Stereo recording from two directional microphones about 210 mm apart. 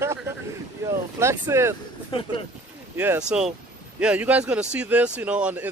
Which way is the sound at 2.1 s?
25° left (ahead or behind).